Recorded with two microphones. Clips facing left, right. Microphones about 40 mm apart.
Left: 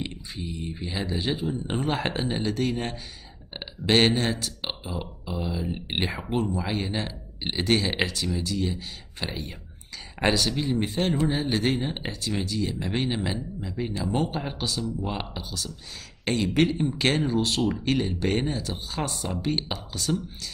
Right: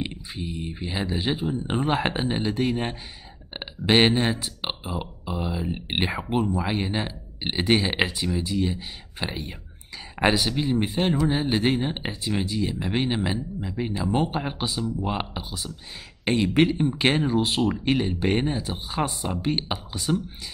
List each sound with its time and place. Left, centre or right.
0.1 s speech: centre